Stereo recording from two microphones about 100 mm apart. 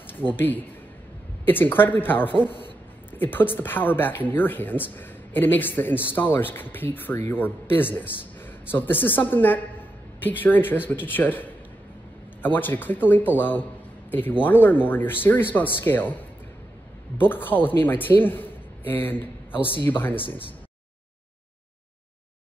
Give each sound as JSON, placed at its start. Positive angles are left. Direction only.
{"t": 0.0, "sound": "a man's voice", "side_deg": 20}